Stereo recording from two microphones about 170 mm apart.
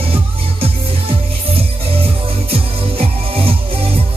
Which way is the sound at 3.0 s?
35° right (ahead or behind).